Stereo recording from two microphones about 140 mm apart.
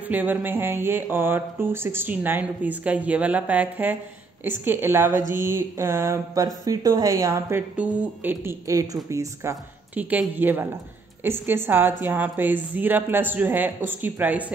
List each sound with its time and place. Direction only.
0.1 s speech: 10° right (ahead or behind)
9.9 s speech: 10° right (ahead or behind)